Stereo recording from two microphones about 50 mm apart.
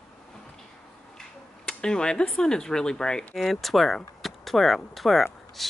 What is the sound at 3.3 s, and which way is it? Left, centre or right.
Speech, centre.